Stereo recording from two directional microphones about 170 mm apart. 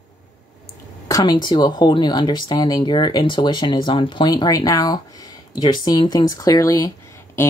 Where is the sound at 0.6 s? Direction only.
20° left (ahead or behind).